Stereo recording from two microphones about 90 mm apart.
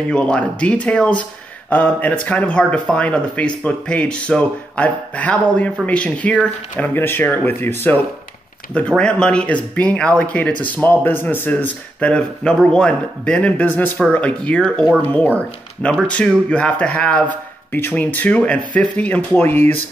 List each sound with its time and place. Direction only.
0.1 s speech: 10° left (ahead or behind)
8.7 s speech: 10° left (ahead or behind)